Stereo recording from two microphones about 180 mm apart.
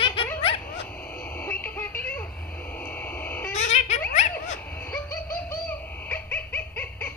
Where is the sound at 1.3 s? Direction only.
10° left (ahead or behind).